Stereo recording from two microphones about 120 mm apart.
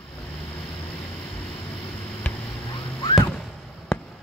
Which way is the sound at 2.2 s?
15° left (ahead or behind).